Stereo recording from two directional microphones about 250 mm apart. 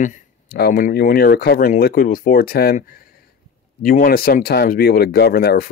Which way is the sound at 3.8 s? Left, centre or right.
Left.